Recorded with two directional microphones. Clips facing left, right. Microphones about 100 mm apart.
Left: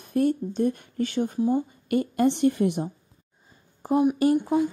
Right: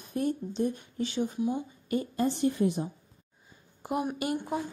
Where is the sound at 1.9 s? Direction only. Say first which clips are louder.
Left 6 dB; 65° left (ahead or behind).